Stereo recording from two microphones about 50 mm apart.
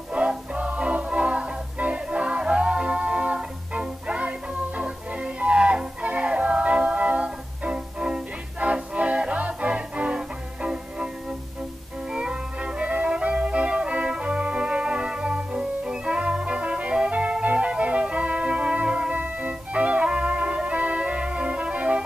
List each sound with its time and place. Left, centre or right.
0.1 s music: right